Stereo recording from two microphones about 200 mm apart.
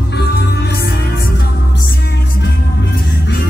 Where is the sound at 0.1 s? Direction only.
55° left (ahead or behind).